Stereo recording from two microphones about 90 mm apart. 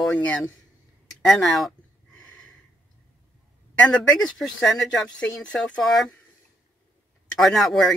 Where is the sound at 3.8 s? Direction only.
15° left (ahead or behind).